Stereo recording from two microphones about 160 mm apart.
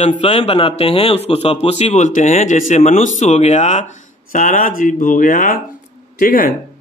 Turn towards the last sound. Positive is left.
turn(degrees=60)  # may be behind; listen again after turning